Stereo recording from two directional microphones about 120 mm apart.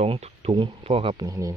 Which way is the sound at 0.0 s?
60° right (ahead or behind).